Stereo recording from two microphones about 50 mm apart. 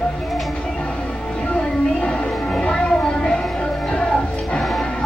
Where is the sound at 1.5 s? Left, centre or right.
Centre.